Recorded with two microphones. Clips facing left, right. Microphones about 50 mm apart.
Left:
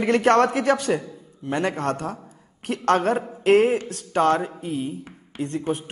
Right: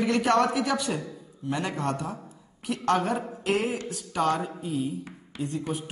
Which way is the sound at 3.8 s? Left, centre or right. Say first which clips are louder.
Left 6 dB; left.